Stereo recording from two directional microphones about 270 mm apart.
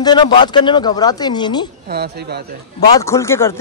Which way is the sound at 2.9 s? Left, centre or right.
Centre.